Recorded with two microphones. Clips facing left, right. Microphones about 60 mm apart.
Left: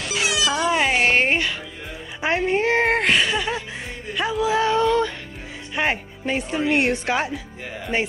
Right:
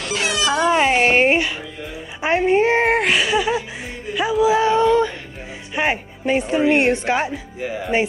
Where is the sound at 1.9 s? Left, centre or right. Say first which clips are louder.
Right 3 dB; centre.